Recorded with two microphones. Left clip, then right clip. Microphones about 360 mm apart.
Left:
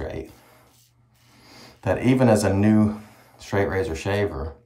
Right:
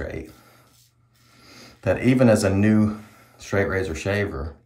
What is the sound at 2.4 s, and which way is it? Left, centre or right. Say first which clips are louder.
Speech: even; centre.